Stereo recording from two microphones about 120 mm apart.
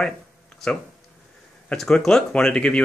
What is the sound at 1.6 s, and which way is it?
Speech, 5° left (ahead or behind).